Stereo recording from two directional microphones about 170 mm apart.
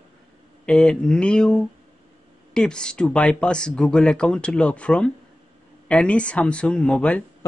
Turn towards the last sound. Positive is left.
turn(degrees=5)  # may be behind; listen again after turning